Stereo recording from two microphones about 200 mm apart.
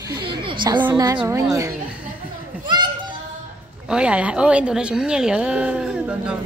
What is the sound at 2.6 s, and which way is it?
Children playing, 20° right (ahead or behind).